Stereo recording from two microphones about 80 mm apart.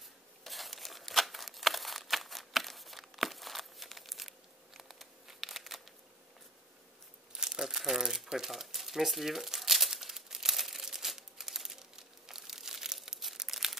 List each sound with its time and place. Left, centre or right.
0.4 s tearing: centre
7.3 s crumpling: centre